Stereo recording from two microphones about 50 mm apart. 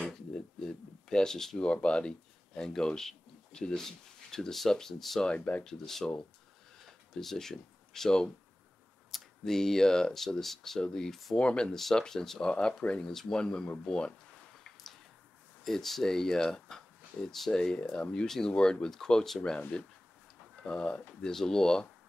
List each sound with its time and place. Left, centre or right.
0.6 s a sound: centre
1.6 s speech: left
5.2 s speech: left
5.6 s speech: centre
9.4 s speech: centre
11.3 s speech: centre
13.0 s speech: centre
15.6 s speech: centre
17.6 s speech: centre